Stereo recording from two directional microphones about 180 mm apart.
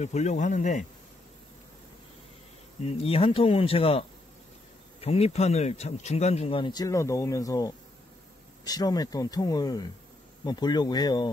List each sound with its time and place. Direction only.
0.0 s speech: 40° left (ahead or behind)
2.8 s speech: 30° left (ahead or behind)
5.0 s speech: 35° left (ahead or behind)